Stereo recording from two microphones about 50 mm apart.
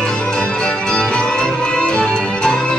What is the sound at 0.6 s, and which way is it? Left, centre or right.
Music, centre.